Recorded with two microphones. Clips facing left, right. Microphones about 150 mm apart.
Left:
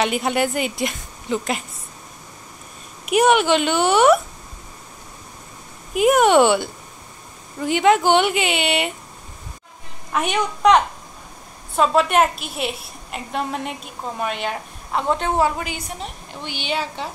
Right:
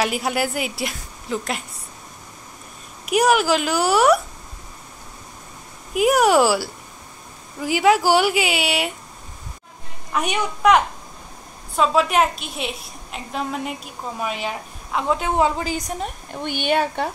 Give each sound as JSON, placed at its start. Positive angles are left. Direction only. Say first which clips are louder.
{"t": 0.0, "sound": "a woman's voice", "louder": "left 2 dB", "side_deg": -5}
{"t": 3.1, "sound": "a woman's voice", "louder": "left 2 dB", "side_deg": 0}
{"t": 5.9, "sound": "a woman's voice", "louder": "left 2 dB", "side_deg": 0}
{"t": 10.1, "sound": "a woman's voice", "louder": "left 1 dB", "side_deg": 0}
{"t": 11.7, "sound": "a woman's voice", "louder": "left 1 dB", "side_deg": 0}
{"t": 15.3, "sound": "a woman's voice", "louder": "right 1 dB", "side_deg": -20}
{"t": 15.6, "sound": "a woman's voice", "louder": "right 4 dB", "side_deg": -40}